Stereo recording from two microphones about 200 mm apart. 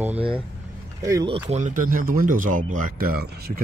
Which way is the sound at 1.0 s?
15° right (ahead or behind).